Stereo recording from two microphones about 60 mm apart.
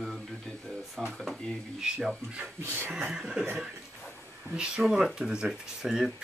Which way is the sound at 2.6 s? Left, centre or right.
Right.